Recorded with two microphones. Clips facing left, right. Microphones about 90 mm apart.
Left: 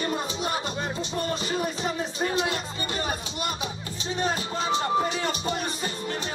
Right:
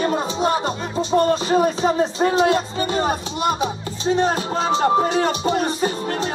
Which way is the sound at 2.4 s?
65° right (ahead or behind).